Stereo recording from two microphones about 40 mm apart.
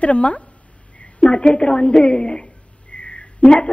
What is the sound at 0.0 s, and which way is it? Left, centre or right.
A woman's voice, left.